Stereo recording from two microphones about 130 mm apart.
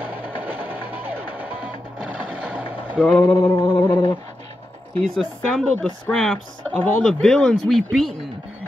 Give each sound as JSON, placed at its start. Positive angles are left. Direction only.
{"t": 0.1, "sound": "music", "side_deg": -15}
{"t": 3.0, "sound": "mantra", "side_deg": 10}
{"t": 3.3, "sound": "a sound", "side_deg": 25}
{"t": 3.7, "sound": "mantra", "side_deg": 20}
{"t": 5.0, "sound": "speech", "side_deg": 5}